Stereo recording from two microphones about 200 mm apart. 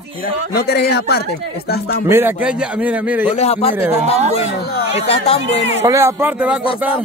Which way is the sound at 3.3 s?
30° left (ahead or behind).